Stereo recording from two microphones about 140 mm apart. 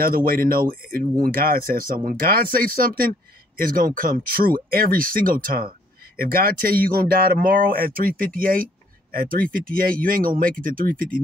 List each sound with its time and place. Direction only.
0.0 s speech: 90° right